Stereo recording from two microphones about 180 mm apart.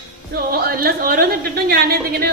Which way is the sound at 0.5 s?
55° right (ahead or behind).